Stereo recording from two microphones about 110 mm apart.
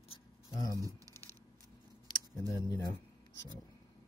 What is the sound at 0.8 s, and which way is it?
Speech, 30° right (ahead or behind).